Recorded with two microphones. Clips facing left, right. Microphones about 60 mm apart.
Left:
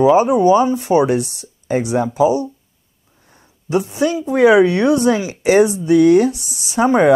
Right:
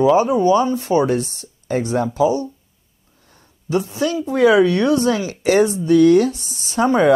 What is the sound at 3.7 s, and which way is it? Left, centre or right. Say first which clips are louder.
Speech: left 2 dB; centre.